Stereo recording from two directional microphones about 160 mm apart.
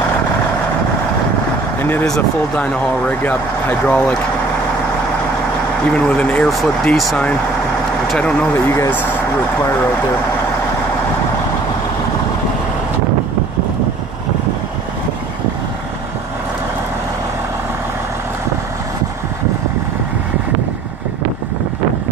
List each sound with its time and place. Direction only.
1.8 s speech: 15° left (ahead or behind)
5.9 s speech: 5° left (ahead or behind)